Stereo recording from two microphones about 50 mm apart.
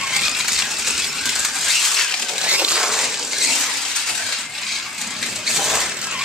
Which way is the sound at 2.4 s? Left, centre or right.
Right.